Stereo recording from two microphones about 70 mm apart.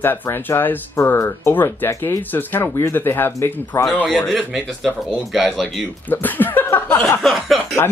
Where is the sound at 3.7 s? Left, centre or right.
Left.